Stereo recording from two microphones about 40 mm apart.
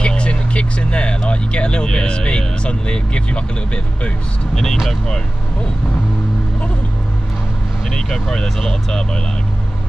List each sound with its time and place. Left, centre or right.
0.0 s vehicle: left
7.9 s speech: centre